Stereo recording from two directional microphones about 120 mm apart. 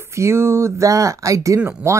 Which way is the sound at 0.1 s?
25° right (ahead or behind).